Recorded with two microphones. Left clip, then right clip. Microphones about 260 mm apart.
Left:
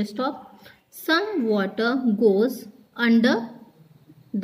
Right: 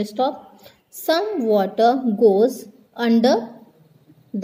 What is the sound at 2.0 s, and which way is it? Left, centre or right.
Speech, right.